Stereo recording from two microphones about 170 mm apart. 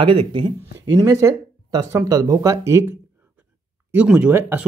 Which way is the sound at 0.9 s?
15° right (ahead or behind).